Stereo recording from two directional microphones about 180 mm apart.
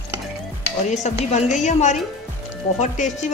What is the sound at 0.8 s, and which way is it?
A woman's voice, 40° left (ahead or behind).